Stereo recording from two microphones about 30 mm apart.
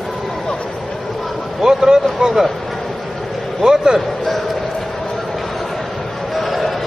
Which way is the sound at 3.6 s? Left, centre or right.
Right.